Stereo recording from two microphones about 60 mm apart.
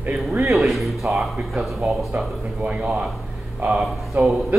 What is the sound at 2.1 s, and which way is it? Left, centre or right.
Speech, right.